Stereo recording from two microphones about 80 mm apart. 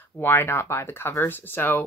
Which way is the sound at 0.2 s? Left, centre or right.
Left.